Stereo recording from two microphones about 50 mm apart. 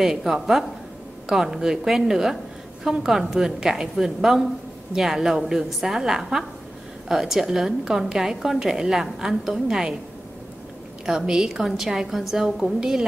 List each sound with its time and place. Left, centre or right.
0.0 s a woman's voice: centre
11.1 s a woman's voice: centre